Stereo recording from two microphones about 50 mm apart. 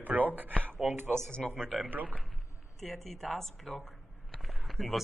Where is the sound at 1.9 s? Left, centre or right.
Right.